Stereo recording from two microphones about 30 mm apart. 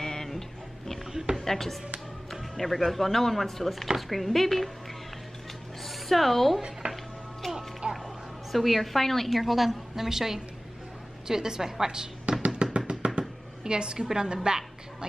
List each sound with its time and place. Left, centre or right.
0.0 s a sound: centre
1.4 s speech: centre
5.9 s speech: centre
6.8 s music: right
7.9 s a woman's voice: centre; by 12.4 s right
12.4 s finger snapping: right
13.7 s a woman's voice: right